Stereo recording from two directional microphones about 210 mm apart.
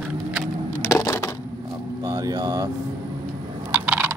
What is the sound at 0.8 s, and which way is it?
Crushing, 15° left (ahead or behind).